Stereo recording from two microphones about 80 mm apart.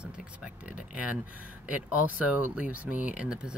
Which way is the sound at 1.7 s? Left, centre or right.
Centre.